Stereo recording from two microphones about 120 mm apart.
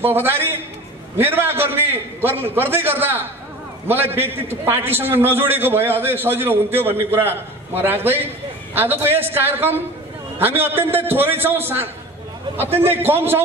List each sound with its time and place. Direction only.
0.0 s a man's voice: 20° right (ahead or behind)
12.9 s a man's voice: 20° right (ahead or behind)